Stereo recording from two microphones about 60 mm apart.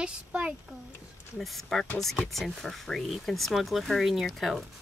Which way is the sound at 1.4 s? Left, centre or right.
Centre.